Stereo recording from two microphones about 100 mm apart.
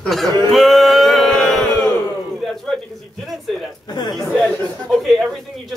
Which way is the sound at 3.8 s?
45° left (ahead or behind).